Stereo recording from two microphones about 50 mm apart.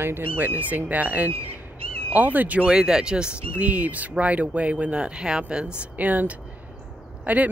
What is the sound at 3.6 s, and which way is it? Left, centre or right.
Speech, right.